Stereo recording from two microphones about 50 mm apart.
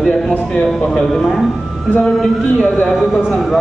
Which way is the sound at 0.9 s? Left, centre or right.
Centre.